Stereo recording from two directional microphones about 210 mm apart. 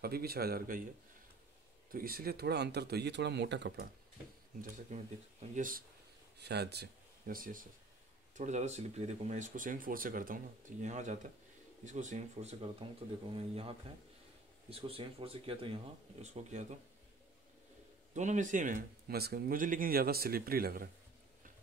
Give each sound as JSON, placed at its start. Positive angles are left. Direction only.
{"t": 0.0, "sound": "speech", "side_deg": -45}
{"t": 1.9, "sound": "speech", "side_deg": -45}
{"t": 4.6, "sound": "speech", "side_deg": -35}
{"t": 6.4, "sound": "speech", "side_deg": -50}
{"t": 18.1, "sound": "speech", "side_deg": -35}